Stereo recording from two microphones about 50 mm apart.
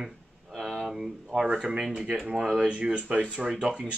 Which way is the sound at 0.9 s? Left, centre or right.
Centre.